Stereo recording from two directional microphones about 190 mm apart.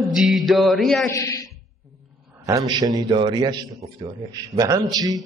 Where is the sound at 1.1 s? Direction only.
15° left (ahead or behind).